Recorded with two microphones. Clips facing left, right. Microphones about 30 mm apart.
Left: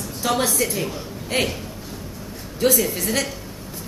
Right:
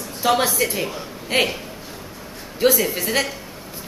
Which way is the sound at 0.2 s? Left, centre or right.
Centre.